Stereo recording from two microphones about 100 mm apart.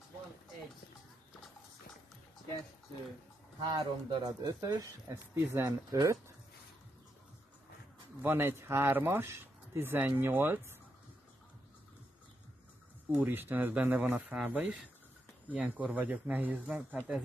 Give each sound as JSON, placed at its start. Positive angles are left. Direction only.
{"t": 3.7, "sound": "speech", "side_deg": -45}
{"t": 8.2, "sound": "speech", "side_deg": -20}
{"t": 13.2, "sound": "speech", "side_deg": -20}